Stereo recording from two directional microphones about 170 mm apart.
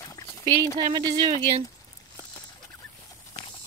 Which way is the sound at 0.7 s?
25° right (ahead or behind).